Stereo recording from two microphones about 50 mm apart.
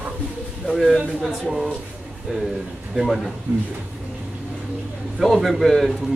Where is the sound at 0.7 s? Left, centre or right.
Centre.